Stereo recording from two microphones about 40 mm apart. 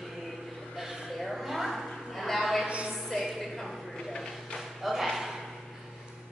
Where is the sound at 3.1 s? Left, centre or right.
Centre.